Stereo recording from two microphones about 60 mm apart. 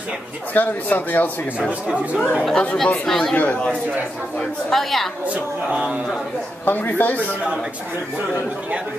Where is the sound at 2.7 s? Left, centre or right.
Centre.